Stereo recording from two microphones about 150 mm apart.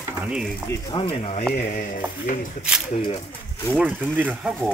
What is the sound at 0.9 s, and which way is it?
Speech, 40° left (ahead or behind).